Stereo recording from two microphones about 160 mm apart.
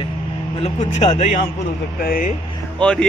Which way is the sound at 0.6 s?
45° left (ahead or behind).